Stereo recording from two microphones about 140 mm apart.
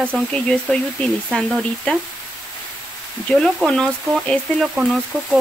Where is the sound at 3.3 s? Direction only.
5° left (ahead or behind).